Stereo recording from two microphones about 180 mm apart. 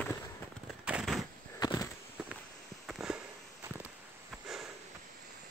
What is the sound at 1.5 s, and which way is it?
Walk, 20° left (ahead or behind).